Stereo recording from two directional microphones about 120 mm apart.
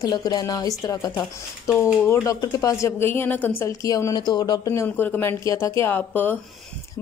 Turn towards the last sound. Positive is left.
turn(degrees=15)  # may be behind; listen again after turning